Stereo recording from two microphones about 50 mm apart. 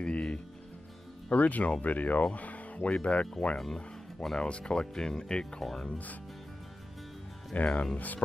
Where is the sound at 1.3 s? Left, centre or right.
Left.